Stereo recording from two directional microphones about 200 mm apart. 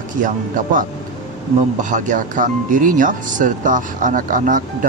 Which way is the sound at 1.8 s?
40° right (ahead or behind).